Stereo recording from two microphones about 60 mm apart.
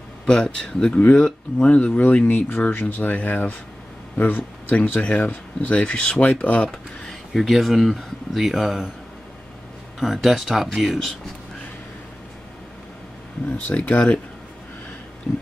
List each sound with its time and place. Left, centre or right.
0.3 s speech: centre
7.1 s speech: centre
9.9 s speech: centre
13.7 s speech: centre